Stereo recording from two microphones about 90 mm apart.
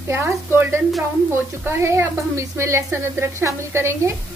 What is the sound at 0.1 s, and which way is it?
A woman's voice, 25° right (ahead or behind).